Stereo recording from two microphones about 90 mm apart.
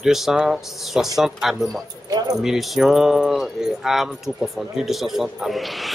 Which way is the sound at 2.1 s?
45° right (ahead or behind).